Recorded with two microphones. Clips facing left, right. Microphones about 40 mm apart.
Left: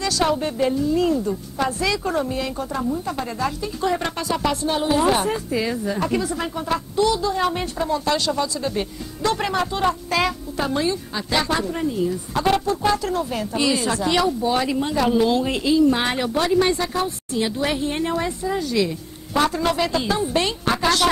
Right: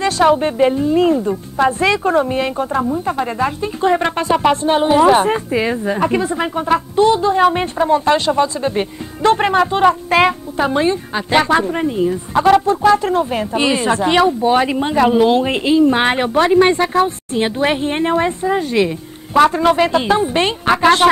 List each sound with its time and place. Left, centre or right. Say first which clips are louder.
0.0 s a woman's voice: right 8 dB; right